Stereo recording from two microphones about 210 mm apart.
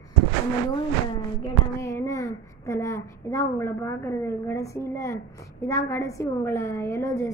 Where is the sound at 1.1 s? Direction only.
15° left (ahead or behind).